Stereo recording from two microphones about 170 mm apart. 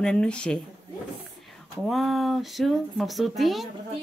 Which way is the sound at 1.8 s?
Centre (ahead or behind).